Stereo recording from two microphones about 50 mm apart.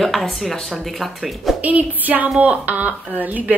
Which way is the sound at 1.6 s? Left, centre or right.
Right.